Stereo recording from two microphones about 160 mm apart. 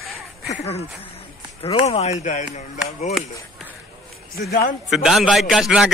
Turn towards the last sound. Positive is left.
turn(degrees=-5)  # may be behind; listen again after turning